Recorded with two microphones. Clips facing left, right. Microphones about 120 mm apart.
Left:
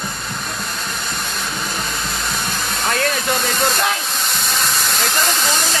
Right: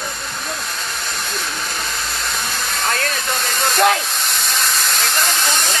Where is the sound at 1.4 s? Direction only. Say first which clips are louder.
Left 1 dB; centre (ahead or behind).